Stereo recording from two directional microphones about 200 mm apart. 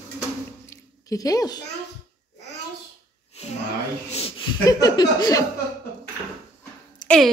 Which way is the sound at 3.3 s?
30° left (ahead or behind).